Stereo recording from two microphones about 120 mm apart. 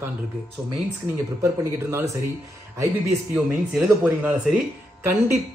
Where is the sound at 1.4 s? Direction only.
25° right (ahead or behind).